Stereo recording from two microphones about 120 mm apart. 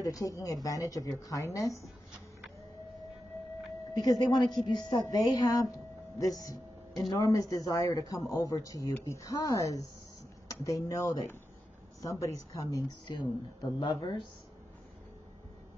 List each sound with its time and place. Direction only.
0.0 s a woman's voice: 30° left (ahead or behind)
3.9 s a woman's voice: 35° left (ahead or behind)